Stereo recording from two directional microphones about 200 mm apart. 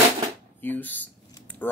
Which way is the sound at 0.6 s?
10° left (ahead or behind).